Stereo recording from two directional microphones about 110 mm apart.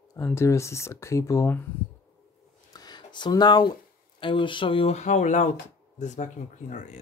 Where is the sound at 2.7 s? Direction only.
40° left (ahead or behind).